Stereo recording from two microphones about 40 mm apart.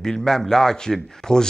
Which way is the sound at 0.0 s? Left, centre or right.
Centre.